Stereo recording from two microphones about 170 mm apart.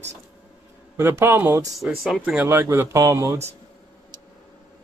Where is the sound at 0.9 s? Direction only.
15° right (ahead or behind).